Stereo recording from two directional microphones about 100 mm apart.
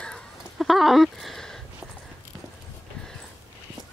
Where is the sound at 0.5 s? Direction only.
Centre (ahead or behind).